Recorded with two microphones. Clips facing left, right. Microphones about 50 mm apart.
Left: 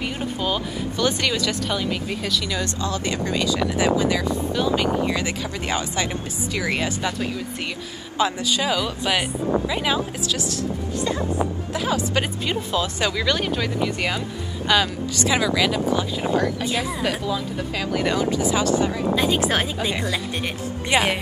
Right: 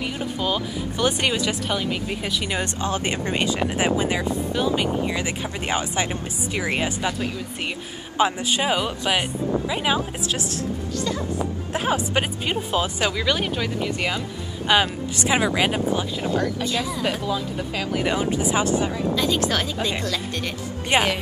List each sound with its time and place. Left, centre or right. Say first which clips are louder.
0.4 s speech: right 1 dB; centre
0.9 s speech: even; right
8.2 s speech: right 1 dB; right
9.7 s speech: even; centre
9.9 s speech: left 1 dB; right
10.9 s a sound: left 2 dB; left
11.1 s a sound: left 3 dB; left
11.7 s speech: right 2 dB; right
13.1 s speech: left 1 dB; centre
14.7 s speech: right 1 dB; right
16.3 s speech: left 2 dB; left
17.3 s speech: even; centre
18.1 s speech: even; right
19.0 s speech: left 1 dB; left